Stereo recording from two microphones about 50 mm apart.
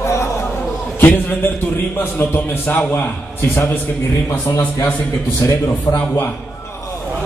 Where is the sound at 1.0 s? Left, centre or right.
Left.